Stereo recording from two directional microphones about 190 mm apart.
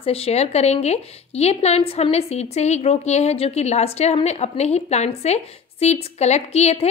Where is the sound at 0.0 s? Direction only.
30° left (ahead or behind).